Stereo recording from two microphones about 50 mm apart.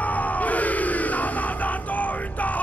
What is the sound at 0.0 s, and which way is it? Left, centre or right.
Crowd, left.